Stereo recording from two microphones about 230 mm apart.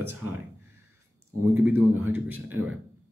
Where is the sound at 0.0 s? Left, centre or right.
Right.